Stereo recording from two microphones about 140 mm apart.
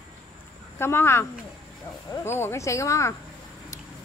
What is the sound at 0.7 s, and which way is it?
Speech, 15° left (ahead or behind).